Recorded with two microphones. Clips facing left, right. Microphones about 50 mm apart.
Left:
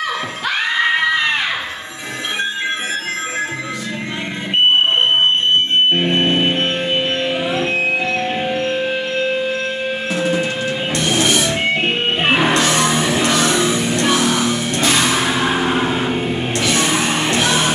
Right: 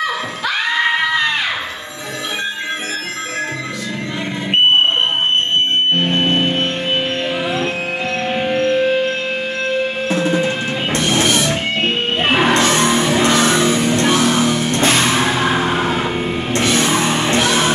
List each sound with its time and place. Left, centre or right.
0.7 s a sound: left
5.9 s music: left
10.0 s music: right
11.8 s music: left
12.5 s music: right
16.1 s vehicle: right
17.2 s music: right